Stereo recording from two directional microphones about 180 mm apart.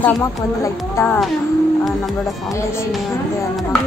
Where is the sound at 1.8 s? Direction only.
Centre (ahead or behind).